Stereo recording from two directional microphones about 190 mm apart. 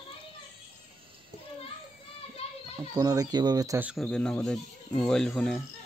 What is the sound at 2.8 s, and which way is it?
Speech, 20° right (ahead or behind).